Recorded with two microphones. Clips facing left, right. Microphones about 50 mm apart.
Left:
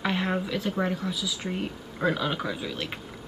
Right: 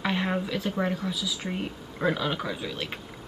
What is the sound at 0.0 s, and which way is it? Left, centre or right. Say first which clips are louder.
Speech: even; centre.